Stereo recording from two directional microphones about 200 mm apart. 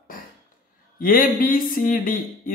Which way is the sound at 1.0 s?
45° left (ahead or behind).